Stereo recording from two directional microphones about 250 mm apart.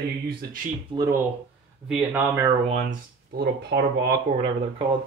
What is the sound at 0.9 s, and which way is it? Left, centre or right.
Speech, centre.